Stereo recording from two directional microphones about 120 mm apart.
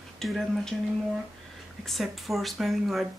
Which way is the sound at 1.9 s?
Centre (ahead or behind).